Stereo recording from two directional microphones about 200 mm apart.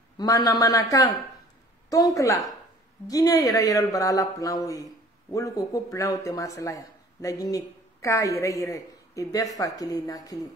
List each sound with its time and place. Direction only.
0.2 s a woman's voice: 20° left (ahead or behind)